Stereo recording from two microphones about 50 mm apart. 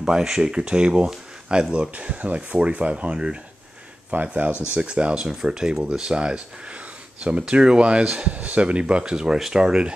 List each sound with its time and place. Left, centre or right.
0.0 s speech: centre